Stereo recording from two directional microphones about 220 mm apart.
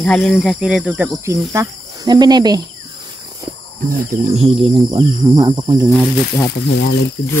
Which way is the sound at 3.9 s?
30° right (ahead or behind).